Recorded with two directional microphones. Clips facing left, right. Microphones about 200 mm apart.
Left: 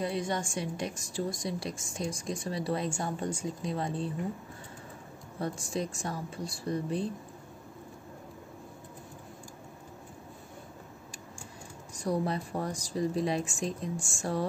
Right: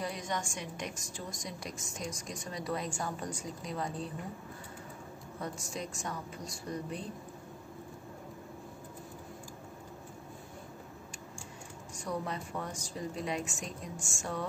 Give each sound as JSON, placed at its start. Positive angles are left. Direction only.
{"t": 0.0, "sound": "a woman's voice", "side_deg": 30}
{"t": 5.4, "sound": "a woman's voice", "side_deg": 30}
{"t": 12.0, "sound": "a woman's voice", "side_deg": 35}